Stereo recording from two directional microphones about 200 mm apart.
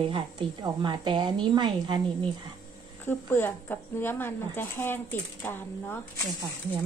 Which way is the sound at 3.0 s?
10° left (ahead or behind).